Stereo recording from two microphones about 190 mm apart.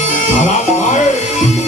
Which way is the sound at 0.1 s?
40° left (ahead or behind).